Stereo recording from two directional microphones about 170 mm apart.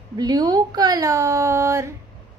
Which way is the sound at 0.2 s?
25° right (ahead or behind).